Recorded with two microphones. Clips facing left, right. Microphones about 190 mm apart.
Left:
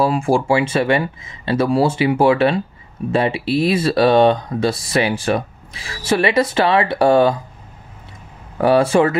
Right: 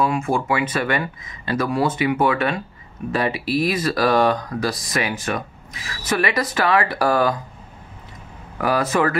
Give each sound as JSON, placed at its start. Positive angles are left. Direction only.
{"t": 0.0, "sound": "speech", "side_deg": 30}
{"t": 8.5, "sound": "speech", "side_deg": 30}